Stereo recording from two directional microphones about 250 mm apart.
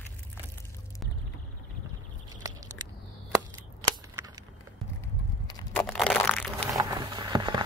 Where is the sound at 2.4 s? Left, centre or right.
Centre.